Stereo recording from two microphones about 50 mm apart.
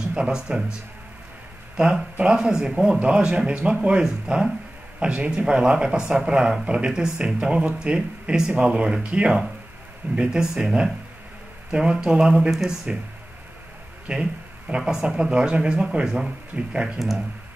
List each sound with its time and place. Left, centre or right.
0.0 s speech: centre
1.8 s speech: centre
12.4 s speech: centre
12.9 s speech: right
14.1 s speech: centre
14.7 s speech: right
15.1 s speech: centre